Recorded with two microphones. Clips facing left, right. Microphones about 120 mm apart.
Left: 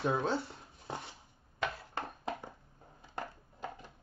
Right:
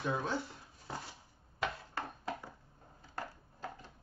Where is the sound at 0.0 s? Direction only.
30° left (ahead or behind).